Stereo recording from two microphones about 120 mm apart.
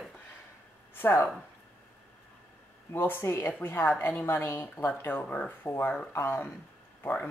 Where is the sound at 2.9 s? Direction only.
20° left (ahead or behind).